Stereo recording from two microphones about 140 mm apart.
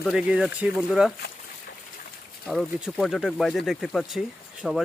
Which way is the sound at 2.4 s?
Centre (ahead or behind).